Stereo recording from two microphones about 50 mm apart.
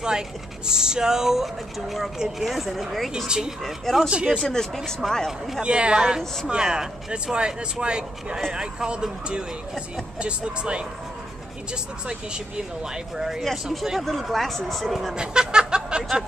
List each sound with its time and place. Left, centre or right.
0.7 s speech: centre
3.3 s speech: centre
3.6 s speech: centre
4.1 s speech: centre
4.4 s speech: centre
5.6 s speech: centre
12.1 s speech: centre
13.8 s speech: centre
15.1 s music: centre
16.0 s speech: centre